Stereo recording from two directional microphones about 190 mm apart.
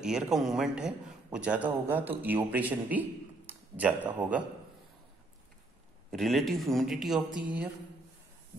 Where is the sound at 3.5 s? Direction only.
10° right (ahead or behind).